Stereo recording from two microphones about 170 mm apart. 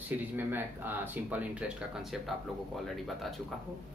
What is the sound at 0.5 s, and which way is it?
Speech, 10° right (ahead or behind).